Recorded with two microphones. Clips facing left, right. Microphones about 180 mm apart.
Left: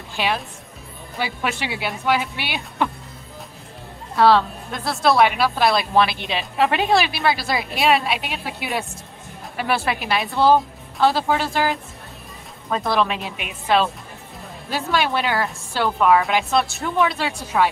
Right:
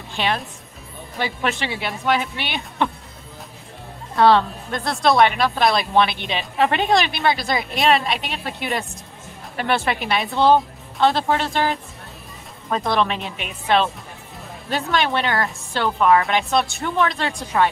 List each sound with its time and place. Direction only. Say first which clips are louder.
0.1 s a woman's voice: even; 5° left (ahead or behind)
4.1 s a woman's voice: even; 5° left (ahead or behind)